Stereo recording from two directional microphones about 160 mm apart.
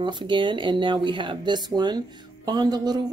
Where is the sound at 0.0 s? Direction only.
30° right (ahead or behind).